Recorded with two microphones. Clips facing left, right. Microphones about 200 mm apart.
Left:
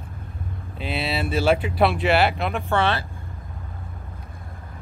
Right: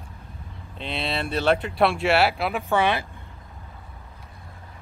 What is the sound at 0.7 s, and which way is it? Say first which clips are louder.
Speech: left 2 dB; 5° left (ahead or behind).